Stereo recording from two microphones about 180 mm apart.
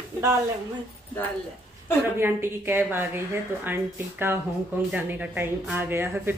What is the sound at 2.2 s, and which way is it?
Speech, 10° right (ahead or behind).